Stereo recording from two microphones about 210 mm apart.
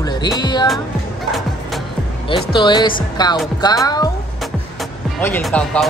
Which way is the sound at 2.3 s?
25° left (ahead or behind).